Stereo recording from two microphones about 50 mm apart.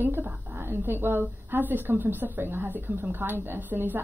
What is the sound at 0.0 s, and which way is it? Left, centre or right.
A woman's voice, right.